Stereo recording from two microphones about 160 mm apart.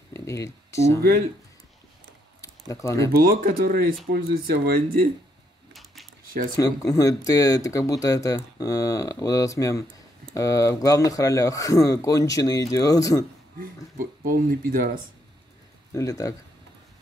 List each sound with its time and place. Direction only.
0.1 s speech: 20° left (ahead or behind)
2.4 s a sound: 20° left (ahead or behind)
3.1 s speech: 65° right (ahead or behind)
5.7 s a sound: centre (ahead or behind)
6.5 s speech: 20° left (ahead or behind)
13.6 s speech: 60° right (ahead or behind)
15.9 s speech: 20° left (ahead or behind)